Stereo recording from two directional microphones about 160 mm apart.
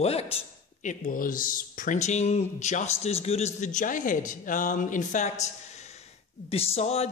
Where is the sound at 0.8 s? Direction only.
55° left (ahead or behind).